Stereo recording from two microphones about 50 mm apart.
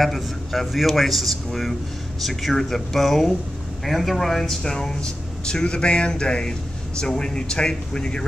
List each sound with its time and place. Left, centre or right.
0.0 s speech: centre